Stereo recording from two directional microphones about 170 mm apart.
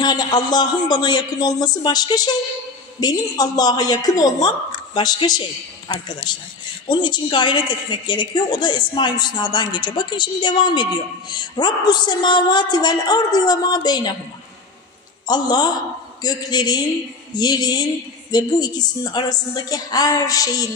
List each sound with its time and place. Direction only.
0.0 s a woman's voice: 25° left (ahead or behind)
15.2 s a woman's voice: 25° left (ahead or behind)